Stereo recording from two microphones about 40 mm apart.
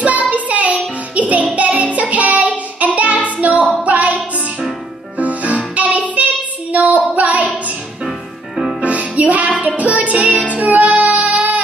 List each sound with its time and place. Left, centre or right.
0.0 s child singing: right
1.1 s music: right
5.8 s child singing: right
7.2 s music: right
8.8 s music: right